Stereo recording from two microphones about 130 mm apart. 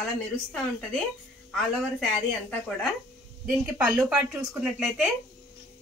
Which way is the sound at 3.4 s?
15° right (ahead or behind).